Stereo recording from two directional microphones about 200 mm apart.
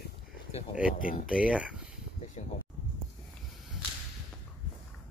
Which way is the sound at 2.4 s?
35° left (ahead or behind).